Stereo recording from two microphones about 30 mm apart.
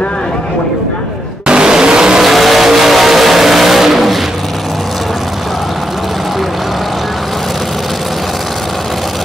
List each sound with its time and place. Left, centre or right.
1.5 s vehicle: right
2.1 s vehicle: centre